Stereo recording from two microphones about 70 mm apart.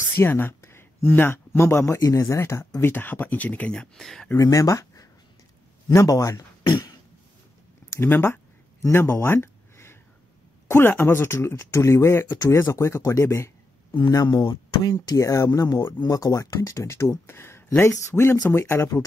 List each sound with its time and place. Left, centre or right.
0.2 s speech: left
2.0 s speech: left
2.2 s speech: left
2.8 s speech: left
3.7 s speech: centre
4.4 s speech: left
6.7 s cough: left
8.0 s speech: left
8.9 s a sound: left
10.7 s speech: left
14.2 s speech: left
15.0 s speech: left